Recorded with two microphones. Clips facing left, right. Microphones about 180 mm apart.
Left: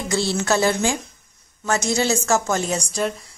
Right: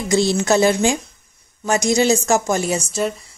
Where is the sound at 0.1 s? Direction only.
15° right (ahead or behind).